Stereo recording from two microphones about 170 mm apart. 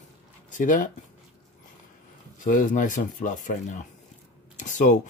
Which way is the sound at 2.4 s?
50° left (ahead or behind).